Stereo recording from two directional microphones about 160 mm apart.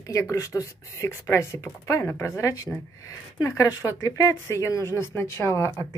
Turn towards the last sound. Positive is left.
turn(degrees=15)  # may be behind; listen again after turning